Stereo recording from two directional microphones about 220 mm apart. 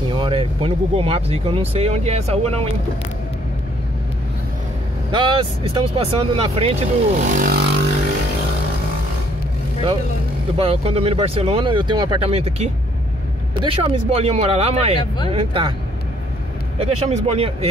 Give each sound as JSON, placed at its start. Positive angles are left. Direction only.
{"t": 0.1, "sound": "speech", "side_deg": -25}
{"t": 5.1, "sound": "speech", "side_deg": -20}
{"t": 10.6, "sound": "speech", "side_deg": -25}
{"t": 16.7, "sound": "speech", "side_deg": -25}